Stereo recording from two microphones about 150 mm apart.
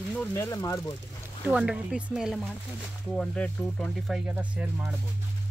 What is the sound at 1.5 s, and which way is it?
Speech, 5° right (ahead or behind).